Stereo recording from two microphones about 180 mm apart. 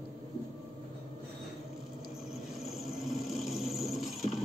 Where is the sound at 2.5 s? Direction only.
Centre (ahead or behind).